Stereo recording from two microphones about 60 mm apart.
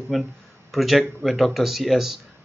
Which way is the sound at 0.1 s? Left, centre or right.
Centre.